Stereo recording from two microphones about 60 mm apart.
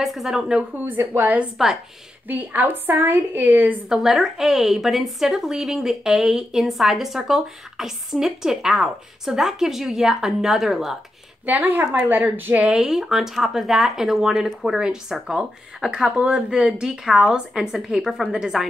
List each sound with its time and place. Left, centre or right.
0.0 s speech: centre
0.7 s a woman's voice: right
3.9 s a woman's voice: centre
11.4 s speech: right
12.6 s a woman's voice: centre